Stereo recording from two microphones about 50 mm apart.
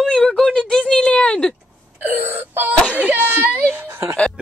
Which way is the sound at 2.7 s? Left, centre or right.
Left.